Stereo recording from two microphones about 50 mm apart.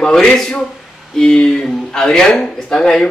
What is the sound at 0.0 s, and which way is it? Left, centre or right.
A man's voice, centre.